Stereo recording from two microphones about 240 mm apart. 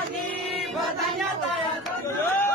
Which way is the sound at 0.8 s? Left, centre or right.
Centre.